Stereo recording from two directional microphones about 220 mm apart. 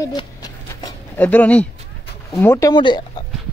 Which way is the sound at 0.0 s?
20° left (ahead or behind).